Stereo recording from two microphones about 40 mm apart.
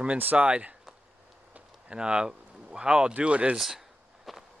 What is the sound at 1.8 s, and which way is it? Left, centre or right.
Speech, right.